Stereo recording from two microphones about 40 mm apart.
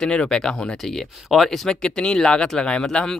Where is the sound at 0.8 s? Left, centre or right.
Centre.